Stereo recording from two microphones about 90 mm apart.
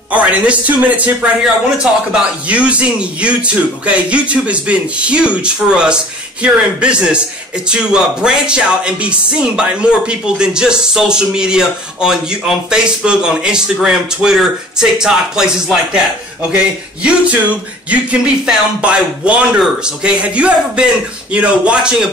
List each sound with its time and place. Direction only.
0.1 s a man's voice: 15° right (ahead or behind)
17.0 s a man's voice: 15° right (ahead or behind)